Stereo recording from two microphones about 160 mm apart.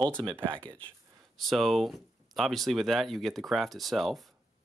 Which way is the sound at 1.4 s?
Centre (ahead or behind).